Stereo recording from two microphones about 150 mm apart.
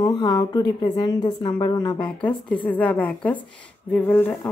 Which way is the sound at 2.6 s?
10° left (ahead or behind).